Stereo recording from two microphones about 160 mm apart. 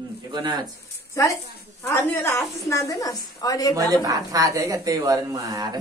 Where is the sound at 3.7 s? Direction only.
20° right (ahead or behind).